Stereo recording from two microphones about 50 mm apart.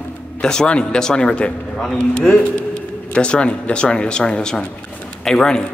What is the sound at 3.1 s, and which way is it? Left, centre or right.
Speech, left.